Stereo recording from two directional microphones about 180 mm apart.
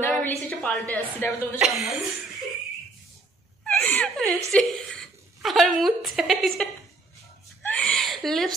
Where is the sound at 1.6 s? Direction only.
Centre (ahead or behind).